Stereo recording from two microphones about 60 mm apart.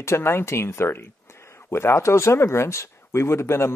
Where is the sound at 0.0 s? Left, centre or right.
Left.